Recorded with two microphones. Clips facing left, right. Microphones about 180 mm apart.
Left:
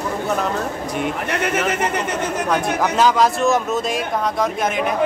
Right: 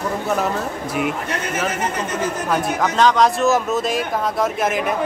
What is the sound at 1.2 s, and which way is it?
Speech, 65° left (ahead or behind).